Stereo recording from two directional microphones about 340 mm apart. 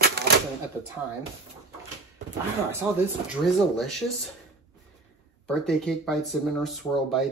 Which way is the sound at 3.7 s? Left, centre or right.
Centre.